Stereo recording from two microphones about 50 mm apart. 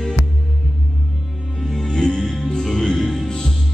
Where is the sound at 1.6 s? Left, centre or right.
Centre.